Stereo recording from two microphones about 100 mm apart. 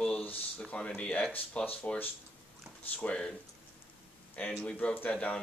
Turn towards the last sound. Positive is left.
turn(degrees=10)  # may be behind; listen again after turning